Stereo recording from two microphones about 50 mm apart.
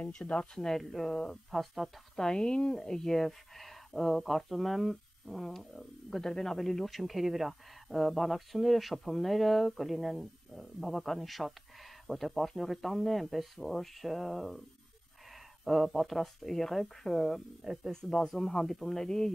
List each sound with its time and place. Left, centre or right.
0.2 s speech: left
0.6 s speech: centre
1.5 s speech: centre
2.1 s speech: centre
17.9 s speech: centre